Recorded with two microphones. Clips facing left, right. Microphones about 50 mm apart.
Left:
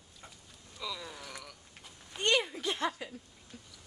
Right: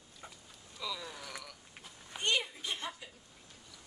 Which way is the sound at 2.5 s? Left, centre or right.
Left.